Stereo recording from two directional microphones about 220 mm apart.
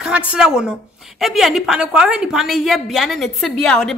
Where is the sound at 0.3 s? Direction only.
5° right (ahead or behind).